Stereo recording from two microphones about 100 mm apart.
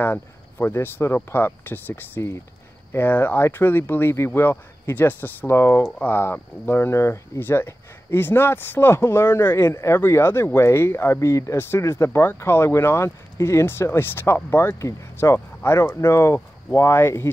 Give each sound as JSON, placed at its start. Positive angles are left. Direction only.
{"t": 0.0, "sound": "speech", "side_deg": 20}
{"t": 5.9, "sound": "speech", "side_deg": 15}